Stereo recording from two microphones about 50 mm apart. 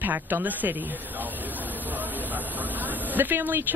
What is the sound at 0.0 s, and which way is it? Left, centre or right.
Speech, right.